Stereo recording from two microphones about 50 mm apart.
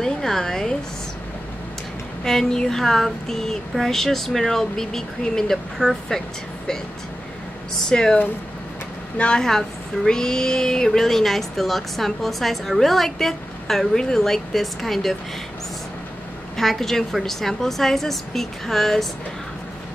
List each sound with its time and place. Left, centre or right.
0.0 s a sound: centre
2.2 s speech: centre
7.9 s speech: centre
9.2 s speech: centre
16.5 s a woman's voice: centre